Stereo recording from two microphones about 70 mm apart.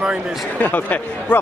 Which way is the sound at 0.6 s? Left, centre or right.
Left.